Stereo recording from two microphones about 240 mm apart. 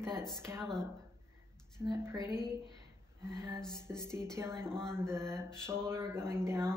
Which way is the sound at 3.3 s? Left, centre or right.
Centre.